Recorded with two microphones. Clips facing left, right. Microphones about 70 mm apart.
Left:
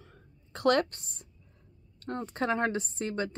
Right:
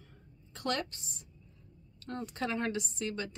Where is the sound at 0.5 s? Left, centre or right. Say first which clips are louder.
Left 9 dB; left.